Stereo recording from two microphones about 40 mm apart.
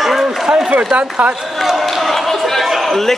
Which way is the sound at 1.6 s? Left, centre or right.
Centre.